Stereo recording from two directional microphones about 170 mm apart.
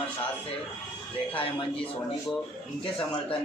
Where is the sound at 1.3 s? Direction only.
30° left (ahead or behind).